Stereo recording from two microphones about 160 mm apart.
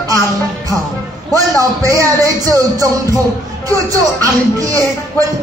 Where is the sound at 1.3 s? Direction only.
20° right (ahead or behind).